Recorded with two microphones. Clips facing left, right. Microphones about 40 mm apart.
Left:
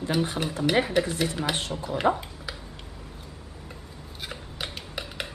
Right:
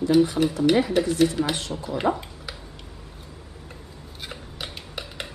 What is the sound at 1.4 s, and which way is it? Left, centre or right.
Speech, centre.